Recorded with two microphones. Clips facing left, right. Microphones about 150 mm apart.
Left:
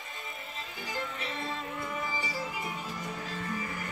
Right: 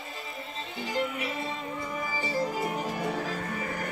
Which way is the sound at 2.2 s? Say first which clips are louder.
Right 7 dB; 45° right (ahead or behind).